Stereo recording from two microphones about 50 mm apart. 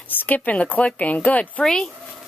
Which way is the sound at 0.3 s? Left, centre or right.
Left.